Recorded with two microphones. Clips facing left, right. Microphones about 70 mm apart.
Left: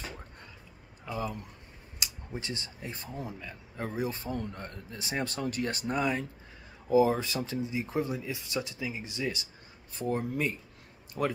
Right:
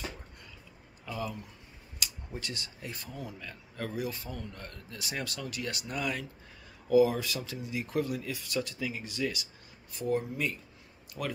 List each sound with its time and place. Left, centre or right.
1.0 s speech: left
3.9 s speech: left
4.6 s speech: left
11.2 s speech: left